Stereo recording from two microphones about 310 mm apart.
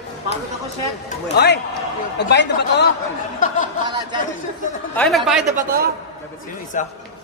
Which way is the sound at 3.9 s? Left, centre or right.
Centre.